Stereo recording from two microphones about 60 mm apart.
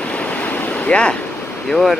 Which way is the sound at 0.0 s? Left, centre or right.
Left.